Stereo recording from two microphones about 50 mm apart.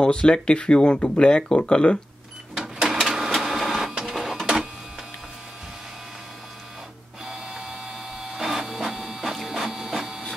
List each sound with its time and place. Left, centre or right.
0.0 s speech: centre
2.5 s printer: centre
7.2 s printer: centre